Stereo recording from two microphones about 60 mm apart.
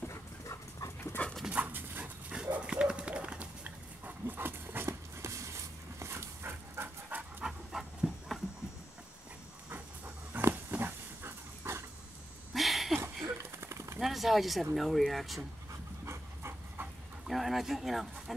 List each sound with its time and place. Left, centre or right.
0.1 s dog: left
1.5 s dog: right
4.8 s dog: right
7.1 s dog: right
7.4 s dog: centre
9.7 s dog: right
12.5 s a sound: centre
13.0 s a sound: right
13.9 s speech: centre
17.3 s speech: centre